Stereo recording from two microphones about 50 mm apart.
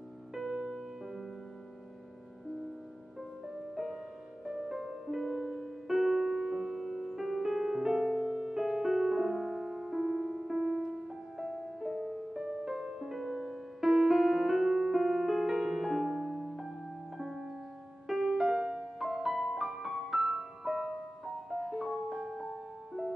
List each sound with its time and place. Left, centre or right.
0.3 s music: centre
3.7 s music: centre
18.9 s music: centre